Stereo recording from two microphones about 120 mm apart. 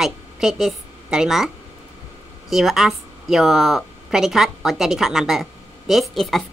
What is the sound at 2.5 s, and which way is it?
A woman's voice, centre (ahead or behind).